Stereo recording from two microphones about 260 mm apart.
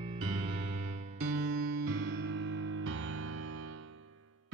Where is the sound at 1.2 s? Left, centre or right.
Right.